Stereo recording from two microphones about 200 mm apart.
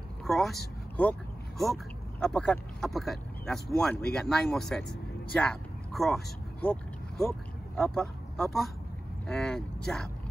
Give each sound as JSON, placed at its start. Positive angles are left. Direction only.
{"t": 0.2, "sound": "speech", "side_deg": 0}